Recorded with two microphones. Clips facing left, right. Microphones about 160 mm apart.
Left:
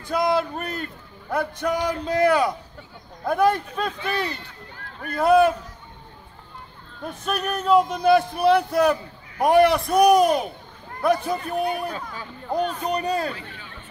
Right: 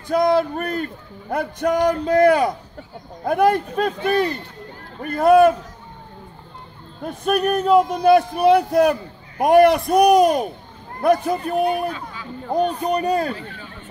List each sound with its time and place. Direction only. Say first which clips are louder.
0.1 s speech: right 5 dB; 50° right (ahead or behind)
7.1 s speech: right 7 dB; 50° right (ahead or behind)